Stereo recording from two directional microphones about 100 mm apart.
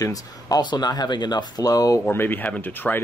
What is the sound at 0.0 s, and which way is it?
Speech, 40° left (ahead or behind).